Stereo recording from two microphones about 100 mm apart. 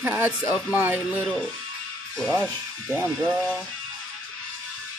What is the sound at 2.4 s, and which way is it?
Speech, 15° right (ahead or behind).